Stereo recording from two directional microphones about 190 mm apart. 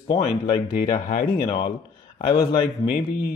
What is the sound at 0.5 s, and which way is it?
Speech, 25° left (ahead or behind).